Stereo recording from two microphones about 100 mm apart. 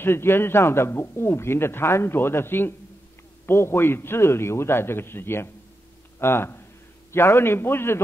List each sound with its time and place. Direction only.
0.0 s speech: 25° left (ahead or behind)